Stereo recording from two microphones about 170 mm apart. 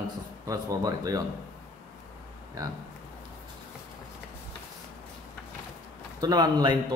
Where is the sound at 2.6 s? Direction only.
20° right (ahead or behind).